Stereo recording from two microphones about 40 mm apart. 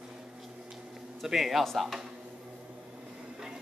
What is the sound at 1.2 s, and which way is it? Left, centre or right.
Speech, centre.